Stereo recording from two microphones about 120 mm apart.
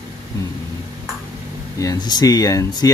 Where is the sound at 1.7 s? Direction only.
30° left (ahead or behind).